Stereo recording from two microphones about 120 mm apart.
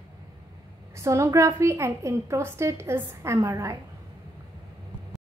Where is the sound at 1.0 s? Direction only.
25° right (ahead or behind).